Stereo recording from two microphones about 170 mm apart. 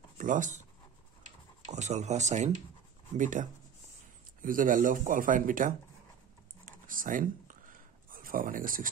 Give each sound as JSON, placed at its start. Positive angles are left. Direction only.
{"t": 0.2, "sound": "speech", "side_deg": -50}
{"t": 1.7, "sound": "speech", "side_deg": -40}
{"t": 6.6, "sound": "a sound", "side_deg": -55}